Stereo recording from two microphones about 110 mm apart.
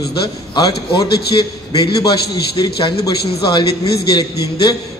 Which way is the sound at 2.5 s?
50° left (ahead or behind).